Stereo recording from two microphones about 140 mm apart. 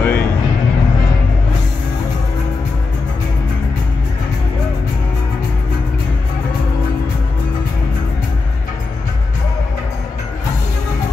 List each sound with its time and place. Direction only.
0.0 s music: 15° left (ahead or behind)